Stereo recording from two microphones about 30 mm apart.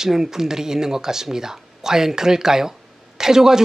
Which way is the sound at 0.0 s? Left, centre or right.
Centre.